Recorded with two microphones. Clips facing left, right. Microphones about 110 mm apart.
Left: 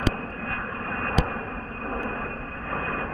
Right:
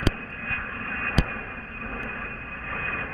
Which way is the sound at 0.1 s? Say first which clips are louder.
Left 4 dB; 30° left (ahead or behind).